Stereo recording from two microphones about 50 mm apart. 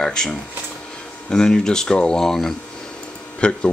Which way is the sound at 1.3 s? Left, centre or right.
Centre.